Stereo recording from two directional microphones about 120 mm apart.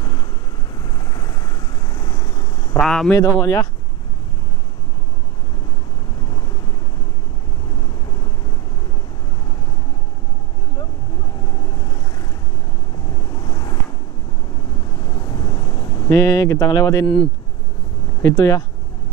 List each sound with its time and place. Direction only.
0.7 s vehicle: 30° left (ahead or behind)
2.8 s a man's voice: 5° left (ahead or behind)
3.2 s speech: 30° left (ahead or behind)
6.2 s vehicle: 30° left (ahead or behind)
11.4 s vehicle: 35° left (ahead or behind)
15.0 s vehicle: 35° left (ahead or behind)
16.1 s speech: 25° left (ahead or behind)
18.2 s speech: 25° left (ahead or behind)